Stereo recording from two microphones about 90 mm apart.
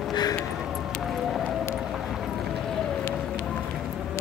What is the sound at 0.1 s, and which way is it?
Music, 50° left (ahead or behind).